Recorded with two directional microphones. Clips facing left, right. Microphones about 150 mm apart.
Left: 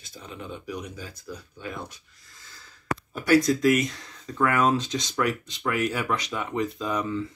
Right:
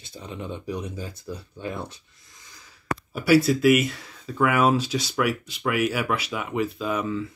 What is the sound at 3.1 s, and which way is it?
Speech, 10° right (ahead or behind).